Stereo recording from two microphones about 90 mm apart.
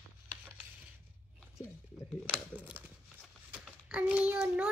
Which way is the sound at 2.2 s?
20° right (ahead or behind).